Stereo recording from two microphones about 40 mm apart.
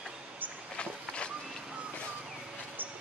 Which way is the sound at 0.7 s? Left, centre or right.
Left.